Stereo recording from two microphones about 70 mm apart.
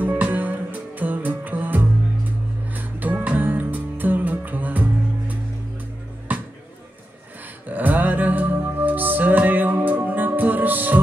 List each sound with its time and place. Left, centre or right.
0.0 s music: right
6.3 s music: right
7.6 s music: right